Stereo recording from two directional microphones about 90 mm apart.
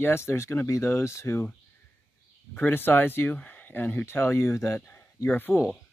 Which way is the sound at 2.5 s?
25° left (ahead or behind).